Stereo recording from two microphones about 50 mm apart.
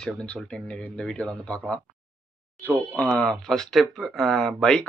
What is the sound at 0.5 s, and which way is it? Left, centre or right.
Speech, left.